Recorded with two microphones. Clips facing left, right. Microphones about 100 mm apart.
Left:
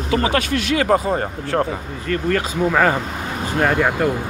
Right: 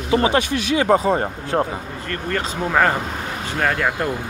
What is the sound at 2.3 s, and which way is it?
Speech, 5° right (ahead or behind).